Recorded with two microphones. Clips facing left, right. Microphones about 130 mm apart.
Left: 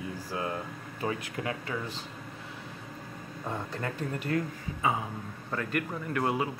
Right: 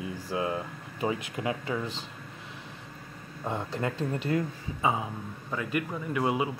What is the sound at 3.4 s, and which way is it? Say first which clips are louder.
Speech: right 4 dB; 20° right (ahead or behind).